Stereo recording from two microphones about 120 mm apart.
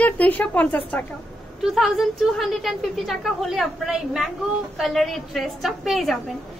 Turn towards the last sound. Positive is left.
turn(degrees=0)  # may be behind; listen again after turning